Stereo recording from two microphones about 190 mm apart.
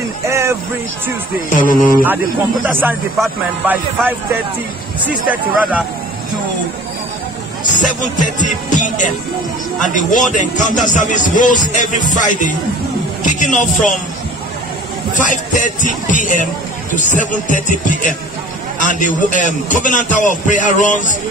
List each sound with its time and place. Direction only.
0.3 s a sound: 15° right (ahead or behind)
1.5 s music: 45° left (ahead or behind)
2.6 s speech: 10° right (ahead or behind)
5.0 s speech: 10° right (ahead or behind)
7.8 s music: 40° left (ahead or behind)
9.8 s speech: 40° left (ahead or behind)
15.1 s music: 40° left (ahead or behind)
18.8 s speech: 40° left (ahead or behind)